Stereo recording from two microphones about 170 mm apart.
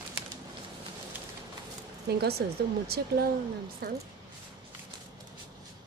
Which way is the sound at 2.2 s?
70° right (ahead or behind).